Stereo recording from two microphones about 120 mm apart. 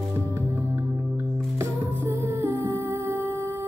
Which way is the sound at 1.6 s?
25° right (ahead or behind).